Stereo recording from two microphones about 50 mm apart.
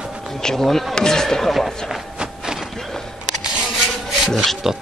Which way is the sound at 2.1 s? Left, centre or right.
Centre.